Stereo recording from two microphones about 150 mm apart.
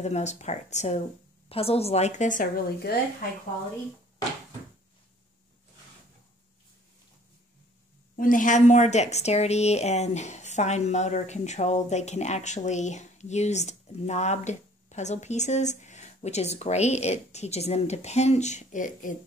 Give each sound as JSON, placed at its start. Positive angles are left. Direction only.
{"t": 0.0, "sound": "a woman's voice", "side_deg": 50}
{"t": 8.2, "sound": "a woman's voice", "side_deg": 60}